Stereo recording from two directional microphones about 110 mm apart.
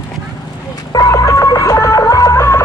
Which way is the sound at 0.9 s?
30° left (ahead or behind).